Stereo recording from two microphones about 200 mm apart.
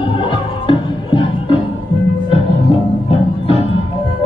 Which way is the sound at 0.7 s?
25° left (ahead or behind).